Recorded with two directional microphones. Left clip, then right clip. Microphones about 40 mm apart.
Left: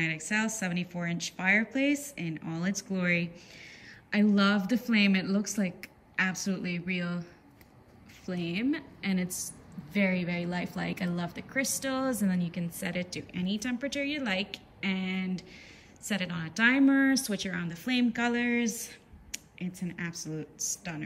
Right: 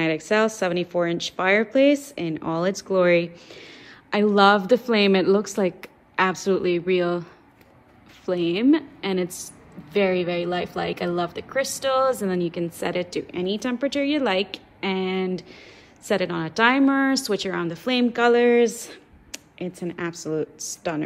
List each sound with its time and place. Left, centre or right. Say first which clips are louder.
0.0 s a woman's voice: right 10 dB; right
1.4 s a woman's voice: right 9 dB; right
4.6 s a woman's voice: right 9 dB; right
5.4 s a woman's voice: right 10 dB; right
8.3 s a woman's voice: right 12 dB; right
9.9 s a woman's voice: right 9 dB; right
10.9 s a woman's voice: right 11 dB; right
11.9 s a woman's voice: right 15 dB; right
12.2 s a woman's voice: right 10 dB; right
13.1 s a woman's voice: right 10 dB; right
16.1 s a woman's voice: right 11 dB; right
17.6 s a woman's voice: right 8 dB; right